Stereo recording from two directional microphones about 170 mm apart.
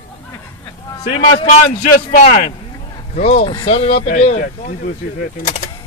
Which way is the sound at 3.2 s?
40° left (ahead or behind).